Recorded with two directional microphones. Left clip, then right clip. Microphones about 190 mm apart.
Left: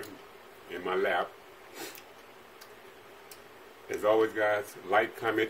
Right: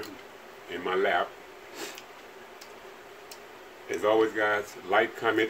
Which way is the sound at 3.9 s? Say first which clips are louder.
Right 2 dB; 20° left (ahead or behind).